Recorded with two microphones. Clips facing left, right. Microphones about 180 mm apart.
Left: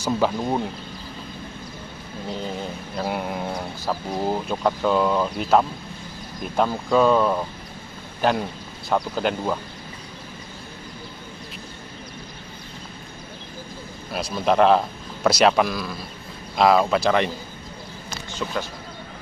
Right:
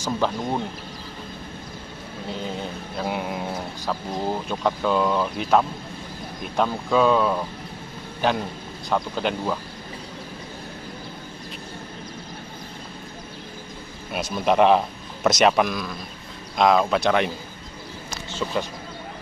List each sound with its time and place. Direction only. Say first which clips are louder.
0.0 s speech: left 2 dB; 10° left (ahead or behind)
3.0 s speech: left 1 dB; centre (ahead or behind)
8.2 s a sound: left 2 dB; 5° left (ahead or behind)
8.9 s speech: left 2 dB; 5° left (ahead or behind)
14.1 s speech: even; centre (ahead or behind)
18.4 s speech: right 2 dB; centre (ahead or behind)